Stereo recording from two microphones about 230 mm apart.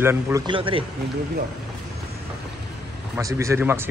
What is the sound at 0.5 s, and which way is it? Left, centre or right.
Speech, right.